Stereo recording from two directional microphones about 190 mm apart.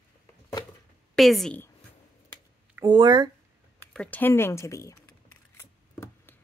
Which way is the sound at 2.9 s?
25° right (ahead or behind).